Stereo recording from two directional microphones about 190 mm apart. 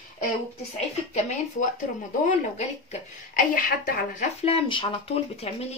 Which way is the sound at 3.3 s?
45° left (ahead or behind).